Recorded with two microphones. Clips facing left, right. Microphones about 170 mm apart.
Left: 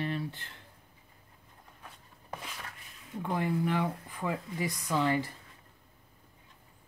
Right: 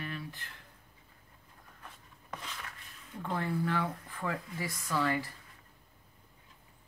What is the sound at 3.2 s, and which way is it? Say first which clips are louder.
Speech: left 3 dB; 15° left (ahead or behind).